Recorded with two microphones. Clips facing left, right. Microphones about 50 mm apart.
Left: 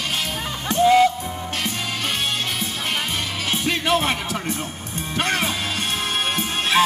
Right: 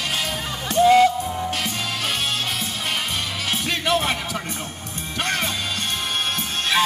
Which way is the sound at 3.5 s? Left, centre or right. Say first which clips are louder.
Left 2 dB; centre.